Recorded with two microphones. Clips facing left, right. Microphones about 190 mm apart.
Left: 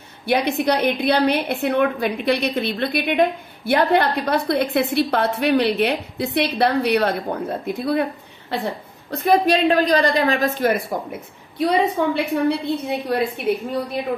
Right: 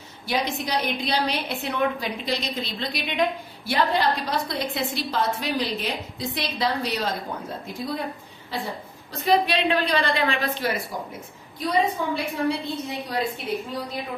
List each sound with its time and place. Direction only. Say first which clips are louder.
0.3 s a woman's voice: left 7 dB; 60° left (ahead or behind)